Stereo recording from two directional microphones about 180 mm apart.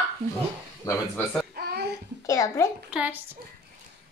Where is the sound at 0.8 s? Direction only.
20° left (ahead or behind).